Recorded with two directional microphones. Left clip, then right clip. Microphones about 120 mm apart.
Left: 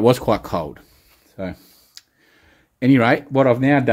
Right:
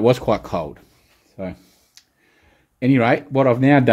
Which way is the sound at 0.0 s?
30° left (ahead or behind).